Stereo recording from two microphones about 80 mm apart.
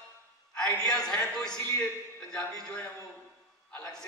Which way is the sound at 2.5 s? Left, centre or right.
Centre.